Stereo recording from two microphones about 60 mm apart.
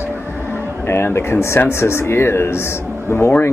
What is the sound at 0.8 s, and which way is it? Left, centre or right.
Speech, left.